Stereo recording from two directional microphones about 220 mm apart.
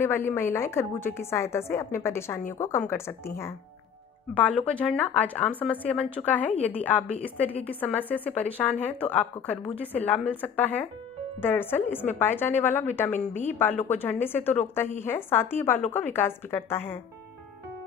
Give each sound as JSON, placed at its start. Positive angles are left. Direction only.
{"t": 0.0, "sound": "a woman's voice", "side_deg": 10}
{"t": 7.4, "sound": "a woman's voice", "side_deg": 25}
{"t": 7.8, "sound": "a woman's voice", "side_deg": 10}
{"t": 13.1, "sound": "a woman's voice", "side_deg": 30}
{"t": 13.5, "sound": "a woman's voice", "side_deg": 10}